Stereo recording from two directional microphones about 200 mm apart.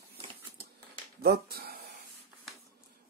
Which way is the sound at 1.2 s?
50° right (ahead or behind).